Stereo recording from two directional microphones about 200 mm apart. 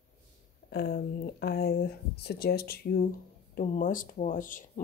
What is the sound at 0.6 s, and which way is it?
Speech, 50° left (ahead or behind).